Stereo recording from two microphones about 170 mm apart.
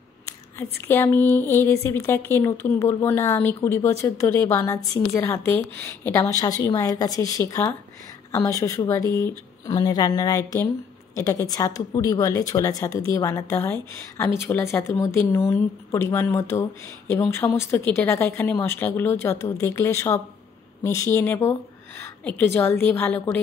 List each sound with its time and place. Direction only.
0.6 s a woman's voice: 15° left (ahead or behind)